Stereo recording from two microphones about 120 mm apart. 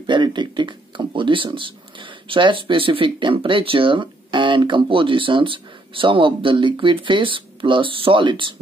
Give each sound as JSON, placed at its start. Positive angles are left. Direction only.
{"t": 0.0, "sound": "speech", "side_deg": -40}